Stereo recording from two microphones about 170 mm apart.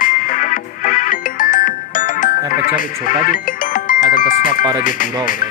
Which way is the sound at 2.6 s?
55° left (ahead or behind).